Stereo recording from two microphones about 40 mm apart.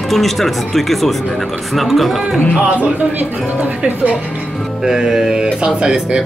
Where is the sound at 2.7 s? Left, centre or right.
Right.